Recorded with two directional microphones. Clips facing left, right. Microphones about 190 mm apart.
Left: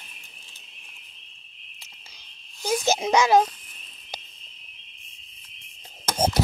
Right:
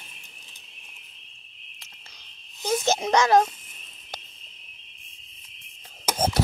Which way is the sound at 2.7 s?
5° left (ahead or behind).